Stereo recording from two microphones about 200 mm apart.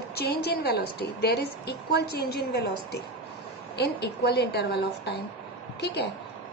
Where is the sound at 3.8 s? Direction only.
55° left (ahead or behind).